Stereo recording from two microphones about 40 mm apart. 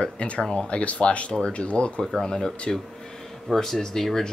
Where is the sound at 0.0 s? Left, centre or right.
Left.